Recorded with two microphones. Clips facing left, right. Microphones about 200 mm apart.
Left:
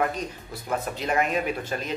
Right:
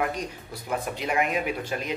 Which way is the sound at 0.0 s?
10° right (ahead or behind).